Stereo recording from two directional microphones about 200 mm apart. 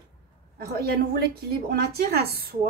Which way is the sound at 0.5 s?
50° right (ahead or behind).